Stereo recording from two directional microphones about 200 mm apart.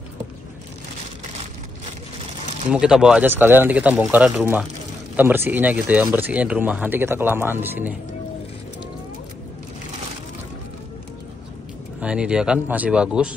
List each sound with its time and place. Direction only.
2.7 s speech: 5° right (ahead or behind)
12.0 s speech: 5° right (ahead or behind)